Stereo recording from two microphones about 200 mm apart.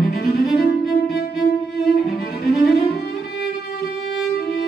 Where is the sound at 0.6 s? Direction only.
55° left (ahead or behind).